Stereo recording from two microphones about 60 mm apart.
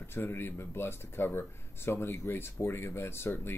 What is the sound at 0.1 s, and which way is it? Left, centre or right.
Speech, left.